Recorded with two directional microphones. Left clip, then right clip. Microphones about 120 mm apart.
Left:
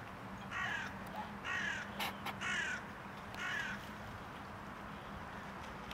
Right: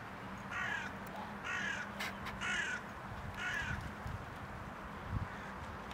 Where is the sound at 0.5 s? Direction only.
15° right (ahead or behind).